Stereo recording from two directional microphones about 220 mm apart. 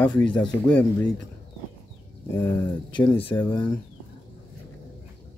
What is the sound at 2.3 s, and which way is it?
Speech, 10° left (ahead or behind).